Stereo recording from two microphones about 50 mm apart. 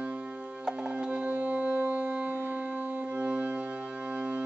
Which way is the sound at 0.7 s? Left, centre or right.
Right.